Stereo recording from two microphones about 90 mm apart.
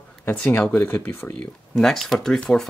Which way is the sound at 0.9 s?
25° left (ahead or behind).